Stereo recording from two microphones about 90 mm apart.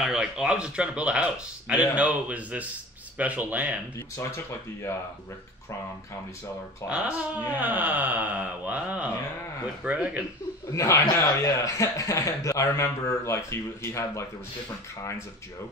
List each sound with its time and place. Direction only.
0.0 s speech: 10° right (ahead or behind)
4.2 s speech: 30° left (ahead or behind)
6.9 s speech: 15° right (ahead or behind)
10.7 s speech: 40° left (ahead or behind)